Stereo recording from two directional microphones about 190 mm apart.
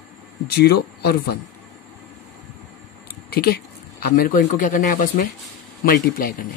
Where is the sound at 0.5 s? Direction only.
55° left (ahead or behind).